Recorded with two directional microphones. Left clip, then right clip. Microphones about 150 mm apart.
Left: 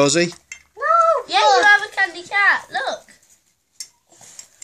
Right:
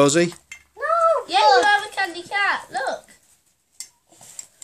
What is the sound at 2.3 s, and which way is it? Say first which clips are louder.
Speech: left 5 dB; centre (ahead or behind).